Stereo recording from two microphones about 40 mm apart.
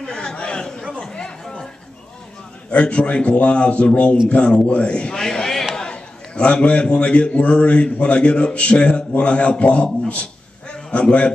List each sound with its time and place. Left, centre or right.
0.0 s chatter: left
2.7 s a man's voice: left; by 5.7 s centre
5.8 s a man's voice: left